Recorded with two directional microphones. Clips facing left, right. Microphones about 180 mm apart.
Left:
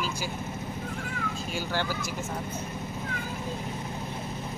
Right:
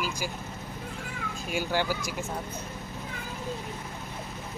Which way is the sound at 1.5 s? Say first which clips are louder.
Right 4 dB; 15° right (ahead or behind).